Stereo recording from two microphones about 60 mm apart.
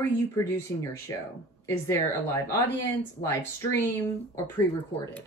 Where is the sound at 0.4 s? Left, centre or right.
Left.